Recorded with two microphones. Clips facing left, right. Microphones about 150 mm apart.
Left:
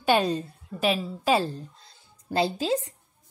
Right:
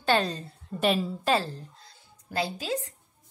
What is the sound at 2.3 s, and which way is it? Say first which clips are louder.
Speech: left 5 dB; 25° left (ahead or behind).